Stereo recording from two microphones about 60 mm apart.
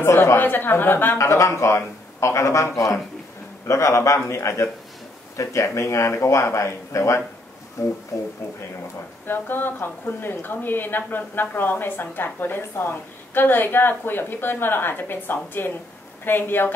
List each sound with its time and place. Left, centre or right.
0.0 s speech: left
0.4 s a woman's voice: left
1.1 s speech: left
9.3 s a woman's voice: left